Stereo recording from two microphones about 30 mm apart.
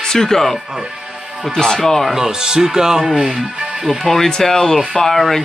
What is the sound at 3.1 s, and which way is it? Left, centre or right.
Speech, centre.